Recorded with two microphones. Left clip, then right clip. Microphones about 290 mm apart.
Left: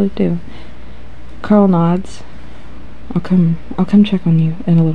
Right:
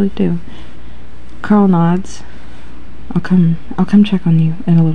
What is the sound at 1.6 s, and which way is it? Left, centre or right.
Speech, centre.